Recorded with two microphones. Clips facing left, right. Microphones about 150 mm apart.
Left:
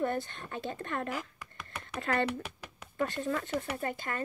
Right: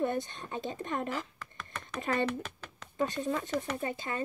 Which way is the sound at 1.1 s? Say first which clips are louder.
Right 1 dB; 10° left (ahead or behind).